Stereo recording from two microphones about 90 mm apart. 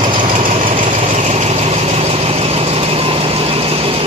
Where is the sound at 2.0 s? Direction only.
90° right.